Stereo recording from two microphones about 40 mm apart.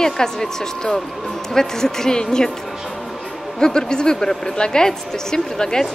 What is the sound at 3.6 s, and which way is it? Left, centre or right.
A woman's voice, centre.